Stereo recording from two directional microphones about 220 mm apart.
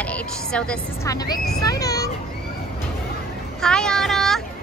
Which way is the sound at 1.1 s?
15° left (ahead or behind).